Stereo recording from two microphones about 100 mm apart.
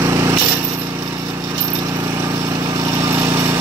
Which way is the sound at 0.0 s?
30° right (ahead or behind).